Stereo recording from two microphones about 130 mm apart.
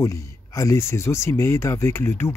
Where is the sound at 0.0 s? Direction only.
25° left (ahead or behind).